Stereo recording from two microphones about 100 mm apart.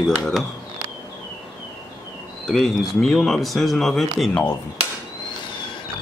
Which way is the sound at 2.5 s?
Centre (ahead or behind).